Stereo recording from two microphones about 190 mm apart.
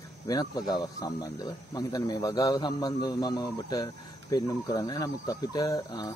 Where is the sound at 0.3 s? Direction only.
20° left (ahead or behind).